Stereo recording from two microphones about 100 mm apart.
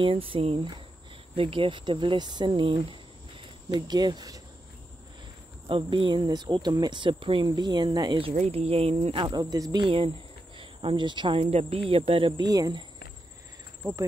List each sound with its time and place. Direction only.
0.0 s speech: 65° right (ahead or behind)
3.7 s speech: 45° right (ahead or behind)
5.7 s speech: 60° right (ahead or behind)
7.4 s speech: 45° right (ahead or behind)
8.2 s speech: 75° right (ahead or behind)
9.3 s speech: 40° right (ahead or behind)
9.8 s speech: 65° right (ahead or behind); by 11.8 s 85° right
11.9 s speech: 65° right (ahead or behind)
12.4 s cricket: 40° right (ahead or behind)
13.8 s insect: 30° right (ahead or behind)